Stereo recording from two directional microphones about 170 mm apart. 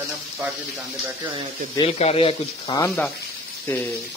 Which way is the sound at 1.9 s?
35° left (ahead or behind).